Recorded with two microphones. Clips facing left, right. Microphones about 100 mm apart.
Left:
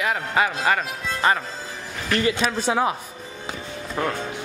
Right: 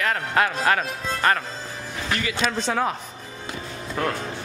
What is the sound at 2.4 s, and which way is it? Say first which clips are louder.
Speech: left 2 dB; 10° left (ahead or behind).